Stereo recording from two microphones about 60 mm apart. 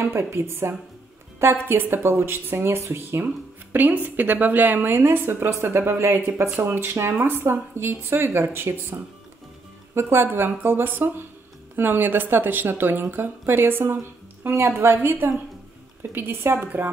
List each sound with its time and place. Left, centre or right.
0.0 s speech: right
3.7 s a woman's voice: right